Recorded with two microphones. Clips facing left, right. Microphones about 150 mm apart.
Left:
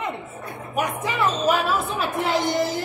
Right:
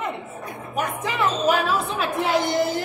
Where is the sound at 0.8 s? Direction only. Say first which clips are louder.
Left 1 dB; 5° left (ahead or behind).